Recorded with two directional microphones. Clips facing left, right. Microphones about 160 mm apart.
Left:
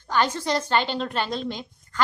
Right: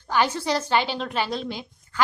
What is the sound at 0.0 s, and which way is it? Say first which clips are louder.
A woman's voice: right 1 dB; 10° right (ahead or behind).